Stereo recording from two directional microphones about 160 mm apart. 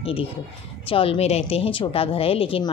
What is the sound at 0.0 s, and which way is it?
A woman's voice, 35° left (ahead or behind).